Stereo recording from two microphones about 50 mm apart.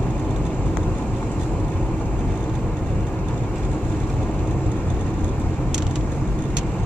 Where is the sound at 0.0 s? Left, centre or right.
Left.